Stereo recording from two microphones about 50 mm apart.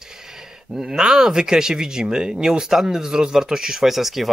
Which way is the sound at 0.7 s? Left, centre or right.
Centre.